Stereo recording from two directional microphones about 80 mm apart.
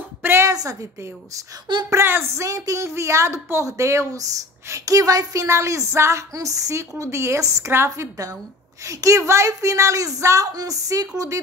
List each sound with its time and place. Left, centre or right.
0.2 s a sound: right
0.5 s a woman's voice: right
1.9 s a woman's voice: right
2.4 s a woman's voice: right